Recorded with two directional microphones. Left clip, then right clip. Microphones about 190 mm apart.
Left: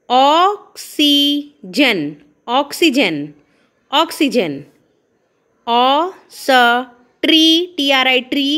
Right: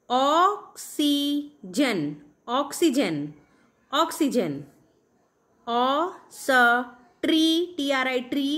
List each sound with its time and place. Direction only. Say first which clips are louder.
0.0 s a woman's voice: left 9 dB; 25° left (ahead or behind)
5.6 s a woman's voice: left 10 dB; 30° left (ahead or behind)